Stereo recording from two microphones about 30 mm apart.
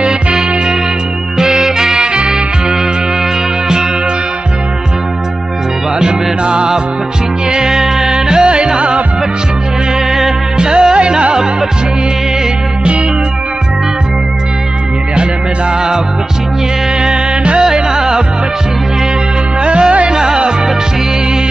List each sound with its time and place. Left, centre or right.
0.0 s music: right
5.9 s music: right
7.7 s music: centre
8.1 s music: right
10.6 s music: right
17.4 s music: right
17.9 s music: centre
19.6 s music: right
20.1 s music: right